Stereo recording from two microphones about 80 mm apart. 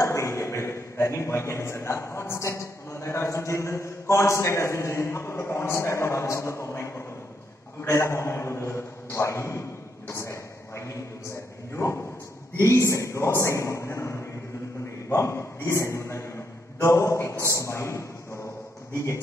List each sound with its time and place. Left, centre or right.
0.0 s a man's voice: left
7.8 s a sound: left
11.7 s a man's voice: left